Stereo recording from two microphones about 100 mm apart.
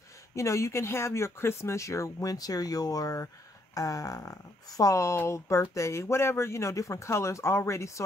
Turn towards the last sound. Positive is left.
turn(degrees=30)  # may be behind; listen again after turning